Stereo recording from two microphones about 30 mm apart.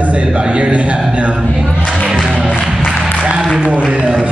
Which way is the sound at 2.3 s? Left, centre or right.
Right.